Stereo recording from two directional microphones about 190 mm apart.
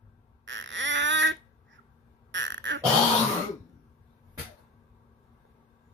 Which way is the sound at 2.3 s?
75° right (ahead or behind).